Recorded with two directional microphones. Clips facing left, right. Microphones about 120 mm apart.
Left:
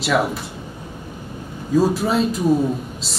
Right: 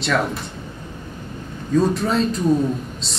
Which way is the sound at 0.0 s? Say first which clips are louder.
Left 2 dB; 5° left (ahead or behind).